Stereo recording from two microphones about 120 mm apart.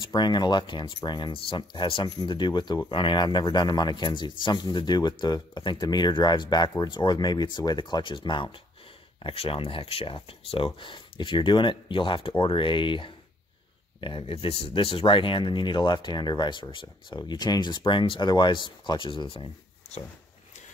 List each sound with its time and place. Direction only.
0.0 s speech: 35° left (ahead or behind)
19.3 s writing: 50° left (ahead or behind)